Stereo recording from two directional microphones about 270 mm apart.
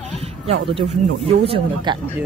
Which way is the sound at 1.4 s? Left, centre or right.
Centre.